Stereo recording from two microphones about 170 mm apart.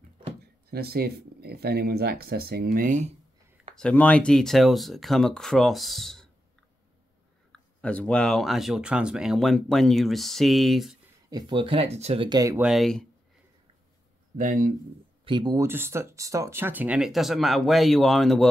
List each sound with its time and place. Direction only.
0.7 s speech: 70° right (ahead or behind); by 3.2 s 45° right (ahead or behind)
3.7 s speech: 5° left (ahead or behind)
7.5 s speech: 5° left (ahead or behind)
11.2 s speech: 25° right (ahead or behind)
12.5 s speech: 5° right (ahead or behind)
14.3 s speech: 50° right (ahead or behind)
15.2 s speech: 25° right (ahead or behind); by 18.5 s centre (ahead or behind)